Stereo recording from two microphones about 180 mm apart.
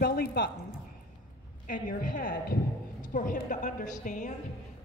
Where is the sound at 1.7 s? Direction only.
50° left (ahead or behind).